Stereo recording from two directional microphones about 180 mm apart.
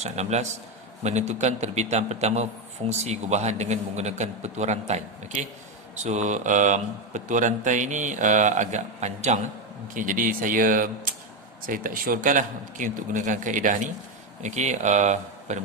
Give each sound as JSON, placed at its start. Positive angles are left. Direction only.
{"t": 0.0, "sound": "a man's voice", "side_deg": -40}